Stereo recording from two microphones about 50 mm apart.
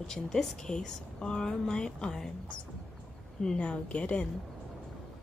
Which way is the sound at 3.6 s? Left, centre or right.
Left.